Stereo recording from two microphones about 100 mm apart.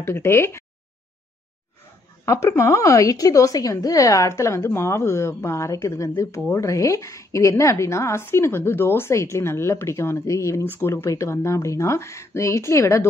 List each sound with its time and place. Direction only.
0.0 s a woman's voice: 25° left (ahead or behind)
2.2 s a woman's voice: 30° left (ahead or behind)